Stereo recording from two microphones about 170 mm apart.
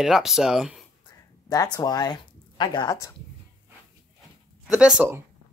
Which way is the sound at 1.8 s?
25° left (ahead or behind).